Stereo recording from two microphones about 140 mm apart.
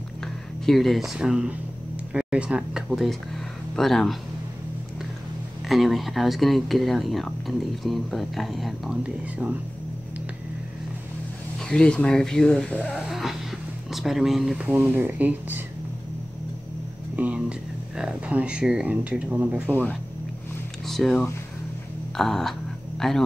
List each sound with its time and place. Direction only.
0.2 s speech: centre (ahead or behind)
5.7 s speech: centre (ahead or behind)
11.6 s speech: 5° left (ahead or behind); by 15.6 s 10° right (ahead or behind)
17.1 s speech: 10° right (ahead or behind)
19.7 s speech: 10° left (ahead or behind)
22.1 s music: centre (ahead or behind)